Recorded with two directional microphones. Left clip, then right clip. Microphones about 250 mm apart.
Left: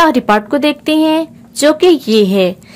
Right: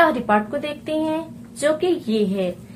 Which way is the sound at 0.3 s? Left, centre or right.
Left.